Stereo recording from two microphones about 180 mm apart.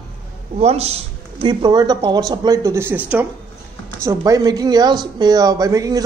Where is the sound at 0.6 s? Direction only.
35° right (ahead or behind); by 3.2 s 10° right (ahead or behind).